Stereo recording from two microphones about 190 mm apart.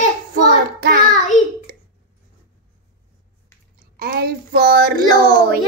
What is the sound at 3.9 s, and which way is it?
Speech, 55° right (ahead or behind).